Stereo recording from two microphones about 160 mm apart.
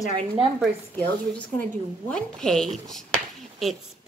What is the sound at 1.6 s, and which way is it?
A woman's voice, 5° left (ahead or behind).